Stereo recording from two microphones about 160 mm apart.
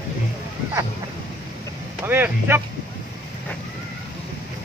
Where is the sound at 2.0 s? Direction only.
15° right (ahead or behind).